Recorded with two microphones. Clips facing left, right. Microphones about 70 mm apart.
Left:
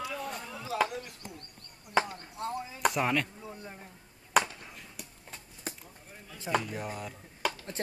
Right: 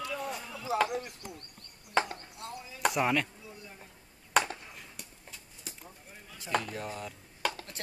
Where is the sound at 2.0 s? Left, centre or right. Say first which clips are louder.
Left 1 dB; centre.